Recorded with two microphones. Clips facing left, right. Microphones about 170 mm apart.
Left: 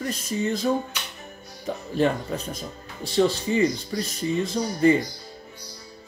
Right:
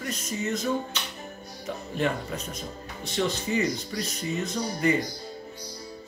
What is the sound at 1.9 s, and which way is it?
Speech, 35° left (ahead or behind).